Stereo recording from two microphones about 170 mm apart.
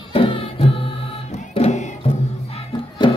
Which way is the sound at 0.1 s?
35° left (ahead or behind).